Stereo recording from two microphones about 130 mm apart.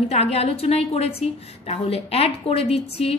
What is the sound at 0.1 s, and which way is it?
A woman's voice, 50° left (ahead or behind).